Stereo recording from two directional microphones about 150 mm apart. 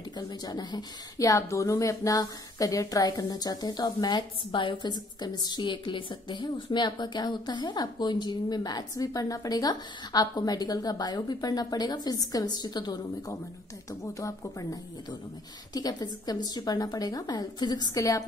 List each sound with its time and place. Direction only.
0.1 s a woman's voice: 25° left (ahead or behind)